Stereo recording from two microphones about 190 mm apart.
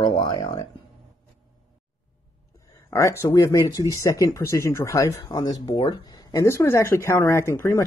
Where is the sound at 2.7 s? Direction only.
15° left (ahead or behind).